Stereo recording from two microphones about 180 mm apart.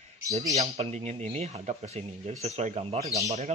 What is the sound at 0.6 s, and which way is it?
Speech, 35° right (ahead or behind).